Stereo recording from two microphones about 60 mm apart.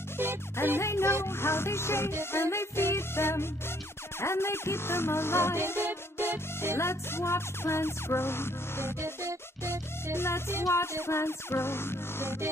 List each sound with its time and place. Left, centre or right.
0.7 s music: left
10.1 s music: left